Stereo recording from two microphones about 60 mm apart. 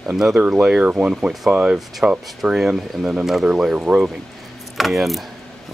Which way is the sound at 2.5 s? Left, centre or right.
Centre.